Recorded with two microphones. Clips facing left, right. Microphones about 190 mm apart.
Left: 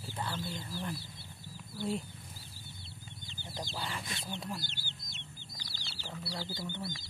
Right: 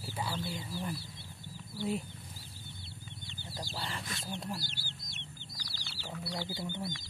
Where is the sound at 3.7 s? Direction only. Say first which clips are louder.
Right 1 dB; centre (ahead or behind).